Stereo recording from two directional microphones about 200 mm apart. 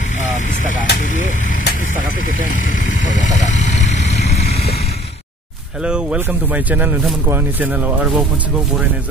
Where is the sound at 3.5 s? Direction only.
35° left (ahead or behind).